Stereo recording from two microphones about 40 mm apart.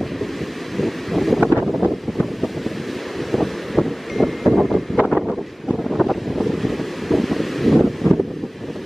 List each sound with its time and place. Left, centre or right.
0.7 s wind noise: centre
3.3 s wind: centre